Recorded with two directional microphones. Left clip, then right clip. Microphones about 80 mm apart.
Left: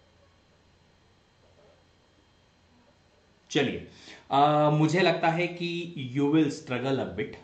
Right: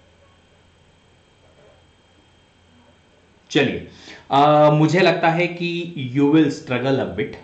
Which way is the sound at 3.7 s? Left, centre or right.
Centre.